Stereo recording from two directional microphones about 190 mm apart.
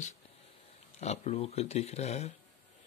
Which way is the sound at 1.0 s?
35° left (ahead or behind).